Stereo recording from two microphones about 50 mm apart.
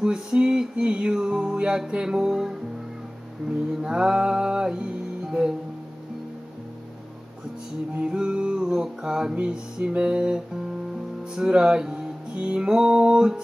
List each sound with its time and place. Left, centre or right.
0.0 s music: centre
8.0 s music: centre
9.3 s music: right